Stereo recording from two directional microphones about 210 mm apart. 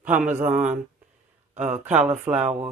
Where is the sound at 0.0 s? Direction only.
5° right (ahead or behind).